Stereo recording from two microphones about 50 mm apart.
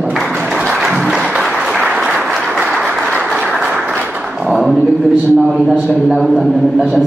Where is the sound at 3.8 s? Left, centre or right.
Right.